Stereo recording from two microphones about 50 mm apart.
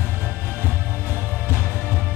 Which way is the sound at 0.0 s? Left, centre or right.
Right.